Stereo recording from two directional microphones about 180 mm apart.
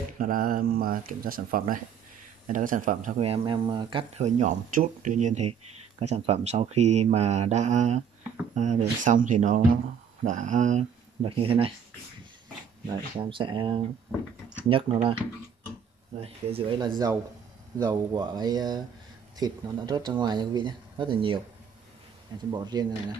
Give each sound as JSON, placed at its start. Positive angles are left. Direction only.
{"t": 0.2, "sound": "speech", "side_deg": -50}
{"t": 3.2, "sound": "speech", "side_deg": -30}
{"t": 4.2, "sound": "speech", "side_deg": -40}
{"t": 11.2, "sound": "speech", "side_deg": -30}
{"t": 12.8, "sound": "speech", "side_deg": -25}
{"t": 16.2, "sound": "speech", "side_deg": -30}
{"t": 22.5, "sound": "speech", "side_deg": -25}